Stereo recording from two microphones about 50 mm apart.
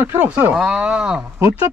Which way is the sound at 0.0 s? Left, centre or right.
Right.